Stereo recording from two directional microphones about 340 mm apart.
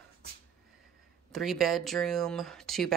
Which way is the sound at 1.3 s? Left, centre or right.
Centre.